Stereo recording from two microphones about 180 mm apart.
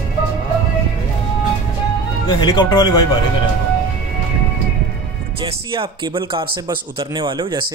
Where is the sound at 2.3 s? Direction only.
25° left (ahead or behind).